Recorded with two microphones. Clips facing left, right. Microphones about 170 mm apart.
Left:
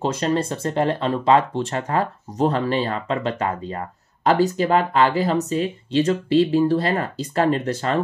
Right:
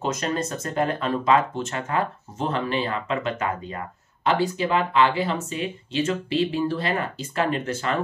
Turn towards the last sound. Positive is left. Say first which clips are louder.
# left 4 dB
turn(degrees=35)  # may be behind; listen again after turning